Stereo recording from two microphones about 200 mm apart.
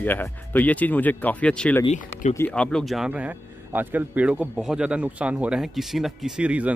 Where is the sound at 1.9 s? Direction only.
35° left (ahead or behind).